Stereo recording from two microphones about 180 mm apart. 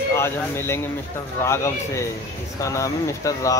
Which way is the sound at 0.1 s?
15° left (ahead or behind).